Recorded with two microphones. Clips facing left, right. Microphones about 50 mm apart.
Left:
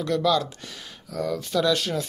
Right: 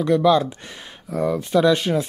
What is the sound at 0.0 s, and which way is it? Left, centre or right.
Speech, right.